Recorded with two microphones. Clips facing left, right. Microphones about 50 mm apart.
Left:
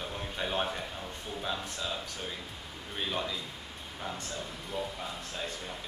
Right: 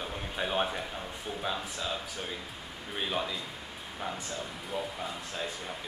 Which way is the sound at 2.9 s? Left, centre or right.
Centre.